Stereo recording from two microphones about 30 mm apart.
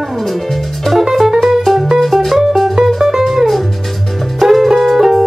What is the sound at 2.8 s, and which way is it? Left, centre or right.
Music, centre.